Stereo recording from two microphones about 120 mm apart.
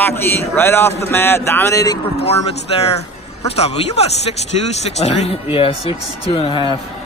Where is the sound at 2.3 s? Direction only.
60° left (ahead or behind); by 6.7 s 45° left (ahead or behind).